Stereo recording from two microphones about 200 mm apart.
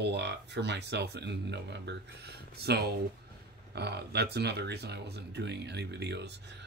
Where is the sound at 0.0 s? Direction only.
60° right (ahead or behind).